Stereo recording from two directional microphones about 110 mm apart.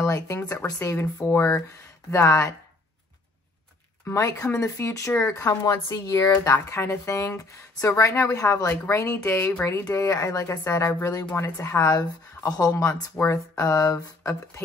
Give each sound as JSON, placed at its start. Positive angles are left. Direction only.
{"t": 0.0, "sound": "speech", "side_deg": 30}
{"t": 4.0, "sound": "speech", "side_deg": 30}